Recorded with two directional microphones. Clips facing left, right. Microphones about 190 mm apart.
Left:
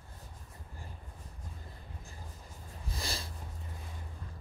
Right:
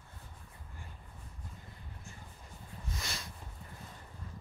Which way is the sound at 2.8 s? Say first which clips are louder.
Left 3 dB; 35° left (ahead or behind).